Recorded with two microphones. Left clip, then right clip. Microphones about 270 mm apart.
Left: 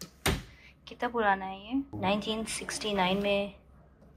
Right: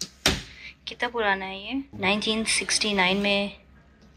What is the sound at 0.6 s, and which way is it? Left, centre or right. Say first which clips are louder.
A woman's voice: right 5 dB; centre.